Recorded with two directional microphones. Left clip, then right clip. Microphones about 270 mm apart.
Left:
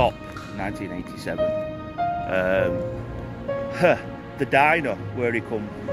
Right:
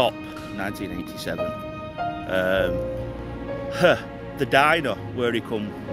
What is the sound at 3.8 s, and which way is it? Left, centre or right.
Speech, centre.